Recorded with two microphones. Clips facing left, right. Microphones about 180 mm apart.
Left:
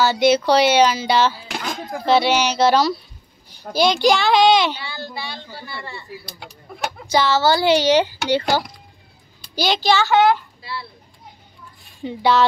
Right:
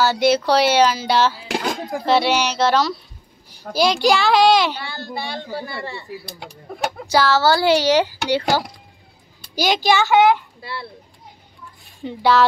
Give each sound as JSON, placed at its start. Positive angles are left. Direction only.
{"t": 0.0, "sound": "a woman's voice", "side_deg": 0}
{"t": 4.7, "sound": "a woman's voice", "side_deg": -50}
{"t": 7.1, "sound": "a woman's voice", "side_deg": -5}
{"t": 9.6, "sound": "a child's voice", "side_deg": -15}
{"t": 10.6, "sound": "a child's voice", "side_deg": -55}
{"t": 12.0, "sound": "a woman's voice", "side_deg": 0}